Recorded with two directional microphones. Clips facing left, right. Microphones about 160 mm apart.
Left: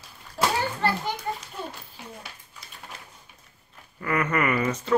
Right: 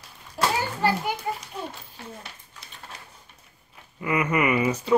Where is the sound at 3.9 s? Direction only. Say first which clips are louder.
Right 1 dB; 10° right (ahead or behind).